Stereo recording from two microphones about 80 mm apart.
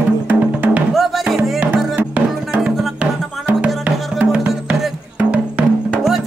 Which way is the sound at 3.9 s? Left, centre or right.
Centre.